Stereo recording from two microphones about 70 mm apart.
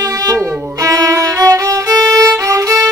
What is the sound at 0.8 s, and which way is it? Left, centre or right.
Music, right.